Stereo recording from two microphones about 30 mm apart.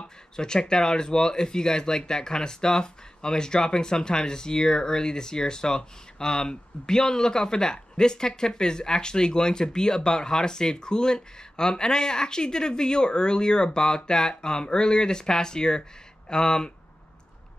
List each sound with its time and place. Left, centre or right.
0.4 s speech: left